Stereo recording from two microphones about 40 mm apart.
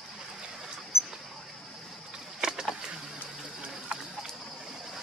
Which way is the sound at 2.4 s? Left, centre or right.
Centre.